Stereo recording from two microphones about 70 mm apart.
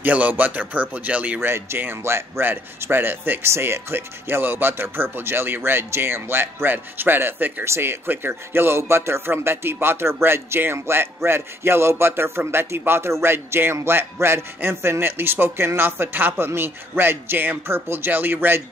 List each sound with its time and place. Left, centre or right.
0.0 s speech: right
1.4 s a man's voice: right
7.6 s a man's voice: right